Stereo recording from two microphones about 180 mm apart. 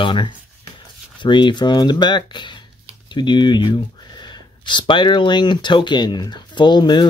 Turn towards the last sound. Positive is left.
turn(degrees=25)  # may be behind; listen again after turning